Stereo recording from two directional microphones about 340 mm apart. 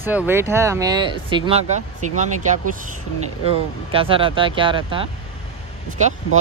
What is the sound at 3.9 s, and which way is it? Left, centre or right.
Speech, centre.